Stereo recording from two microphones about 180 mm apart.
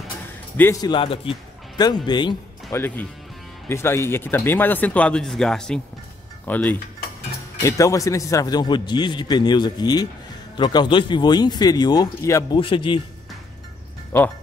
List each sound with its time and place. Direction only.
0.6 s speech: 15° left (ahead or behind)
2.7 s speech: 10° left (ahead or behind)
12.5 s speech: 30° left (ahead or behind)